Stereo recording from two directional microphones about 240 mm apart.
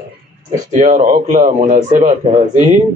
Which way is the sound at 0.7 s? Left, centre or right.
Right.